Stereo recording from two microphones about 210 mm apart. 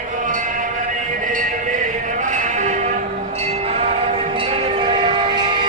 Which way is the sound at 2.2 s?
35° right (ahead or behind).